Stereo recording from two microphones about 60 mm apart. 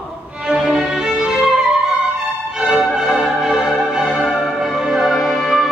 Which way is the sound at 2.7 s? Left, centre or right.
Centre.